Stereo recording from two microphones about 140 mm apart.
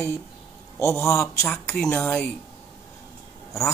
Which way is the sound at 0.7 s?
20° left (ahead or behind).